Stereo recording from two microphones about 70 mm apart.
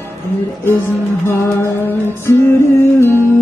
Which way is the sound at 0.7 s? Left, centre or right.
Left.